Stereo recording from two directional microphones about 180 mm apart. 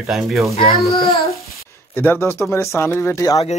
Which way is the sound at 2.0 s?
10° left (ahead or behind).